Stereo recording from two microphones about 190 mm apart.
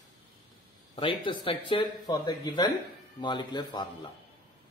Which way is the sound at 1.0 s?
25° left (ahead or behind).